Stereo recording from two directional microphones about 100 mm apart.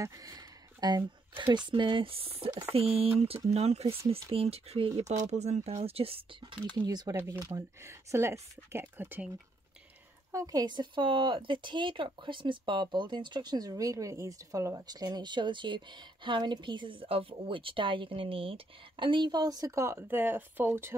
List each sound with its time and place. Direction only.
0.0 s a sound: 35° right (ahead or behind)
1.3 s speech: 55° right (ahead or behind); by 3.3 s 75° right (ahead or behind)
3.4 s speech: 90° right
6.9 s speech: 45° right (ahead or behind)
7.2 s speech: 30° right (ahead or behind)
10.3 s speech: 40° right (ahead or behind)